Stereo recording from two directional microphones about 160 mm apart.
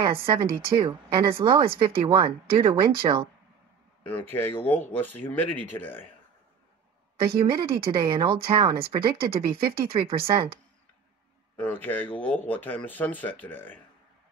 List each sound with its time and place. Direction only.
0.0 s speech: 30° right (ahead or behind)
4.3 s speech: 15° left (ahead or behind)
7.3 s speech: 30° right (ahead or behind)
11.5 s speech: 10° left (ahead or behind)